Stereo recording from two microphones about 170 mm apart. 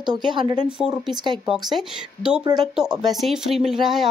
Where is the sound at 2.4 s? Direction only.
25° right (ahead or behind).